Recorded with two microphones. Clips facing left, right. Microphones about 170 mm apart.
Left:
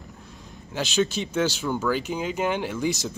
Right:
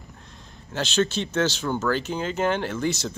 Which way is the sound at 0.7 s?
10° left (ahead or behind).